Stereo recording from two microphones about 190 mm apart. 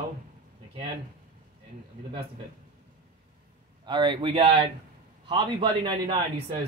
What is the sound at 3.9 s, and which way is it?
Speech, 25° right (ahead or behind).